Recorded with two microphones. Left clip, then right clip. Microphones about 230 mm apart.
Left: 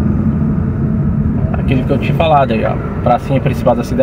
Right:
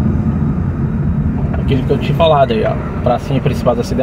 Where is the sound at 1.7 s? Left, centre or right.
Centre.